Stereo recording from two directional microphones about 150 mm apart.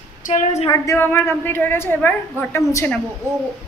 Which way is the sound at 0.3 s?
50° left (ahead or behind).